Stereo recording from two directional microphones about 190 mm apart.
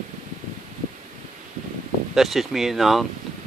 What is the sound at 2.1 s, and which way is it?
Speech, centre (ahead or behind).